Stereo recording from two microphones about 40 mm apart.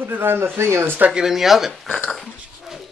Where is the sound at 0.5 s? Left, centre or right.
Right.